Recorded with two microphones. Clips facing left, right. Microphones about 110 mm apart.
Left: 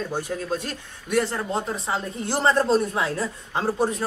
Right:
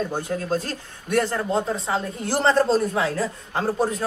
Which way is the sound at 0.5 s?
45° right (ahead or behind).